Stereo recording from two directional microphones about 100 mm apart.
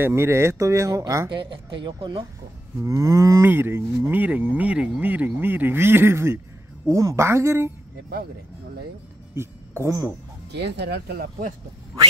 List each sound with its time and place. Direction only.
0.0 s speech: 25° right (ahead or behind)
1.3 s speech: 55° right (ahead or behind)
2.8 s speech: 30° right (ahead or behind)
9.3 s a sound: 25° right (ahead or behind)